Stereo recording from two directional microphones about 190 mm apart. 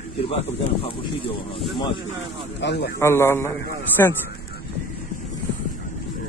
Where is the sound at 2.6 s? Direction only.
65° left (ahead or behind).